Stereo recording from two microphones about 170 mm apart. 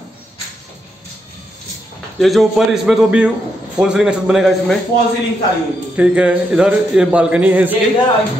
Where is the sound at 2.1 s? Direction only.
Centre (ahead or behind).